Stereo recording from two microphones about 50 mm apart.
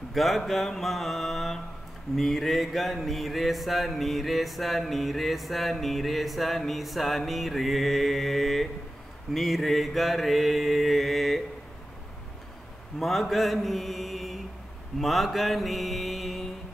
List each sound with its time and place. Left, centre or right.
0.1 s mantra: centre
13.0 s mantra: centre